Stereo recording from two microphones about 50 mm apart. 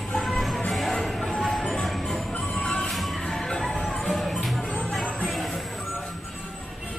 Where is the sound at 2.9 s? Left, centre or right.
Centre.